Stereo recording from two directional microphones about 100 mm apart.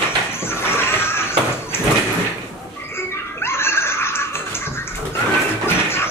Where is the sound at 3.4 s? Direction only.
25° left (ahead or behind).